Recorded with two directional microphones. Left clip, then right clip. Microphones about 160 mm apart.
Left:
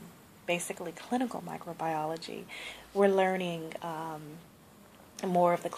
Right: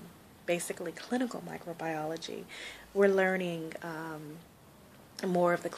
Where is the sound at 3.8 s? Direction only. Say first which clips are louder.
Left 5 dB; 25° right (ahead or behind).